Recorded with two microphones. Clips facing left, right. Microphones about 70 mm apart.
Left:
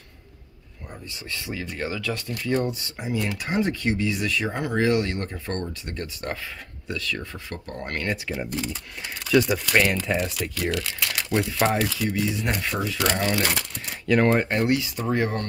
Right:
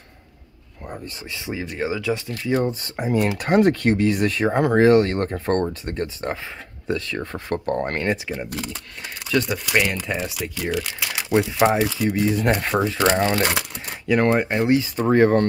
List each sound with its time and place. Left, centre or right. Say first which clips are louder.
0.8 s a sound: right 6 dB; right
1.3 s speech: right 3 dB; centre
2.6 s speech: right 5 dB; right
3.3 s speech: right 9 dB; right
7.2 s speech: right 8 dB; right
7.9 s speech: right 5 dB; right
9.3 s speech: left 2 dB; centre
9.7 s speech: even; centre
12.2 s speech: right 9 dB; right
14.0 s speech: right 1 dB; centre
14.7 s speech: right 6 dB; right